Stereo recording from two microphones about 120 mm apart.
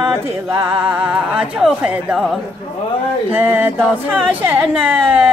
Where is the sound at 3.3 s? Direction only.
15° right (ahead or behind).